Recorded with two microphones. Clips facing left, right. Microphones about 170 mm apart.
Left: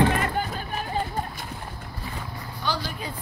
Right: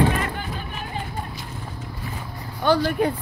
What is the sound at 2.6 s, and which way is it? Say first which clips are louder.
Speech: right 12 dB; 55° right (ahead or behind).